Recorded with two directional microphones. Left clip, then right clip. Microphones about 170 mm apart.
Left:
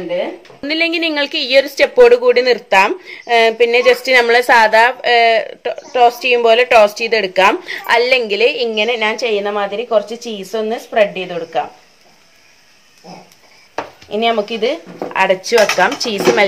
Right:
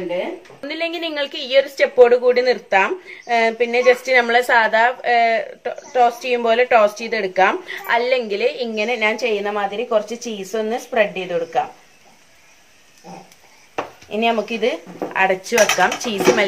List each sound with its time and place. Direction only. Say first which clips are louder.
0.6 s a woman's voice: left 9 dB; 50° left (ahead or behind); by 11.6 s 35° left (ahead or behind)
14.1 s speech: left 4 dB; 45° left (ahead or behind)